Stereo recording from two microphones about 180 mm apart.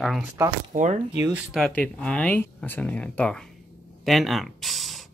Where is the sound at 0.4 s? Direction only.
15° right (ahead or behind); by 3.5 s 5° left (ahead or behind).